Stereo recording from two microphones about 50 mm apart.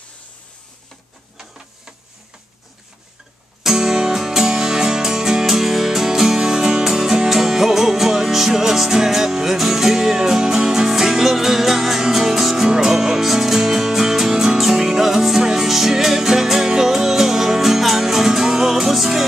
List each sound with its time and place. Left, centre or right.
3.6 s music: centre